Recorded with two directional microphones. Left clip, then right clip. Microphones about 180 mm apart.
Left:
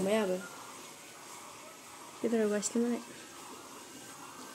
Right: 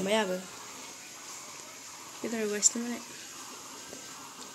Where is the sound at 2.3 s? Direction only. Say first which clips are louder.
Right 1 dB; 30° left (ahead or behind).